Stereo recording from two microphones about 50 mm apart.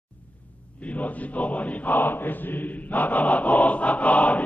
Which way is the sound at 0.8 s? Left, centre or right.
Left.